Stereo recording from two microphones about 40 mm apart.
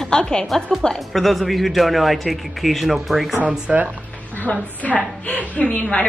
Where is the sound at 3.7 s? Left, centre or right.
Centre.